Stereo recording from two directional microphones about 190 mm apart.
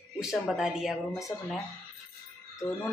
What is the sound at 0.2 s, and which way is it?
A woman's voice, centre (ahead or behind).